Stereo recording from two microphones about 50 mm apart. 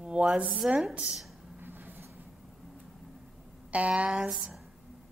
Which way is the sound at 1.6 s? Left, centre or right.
Right.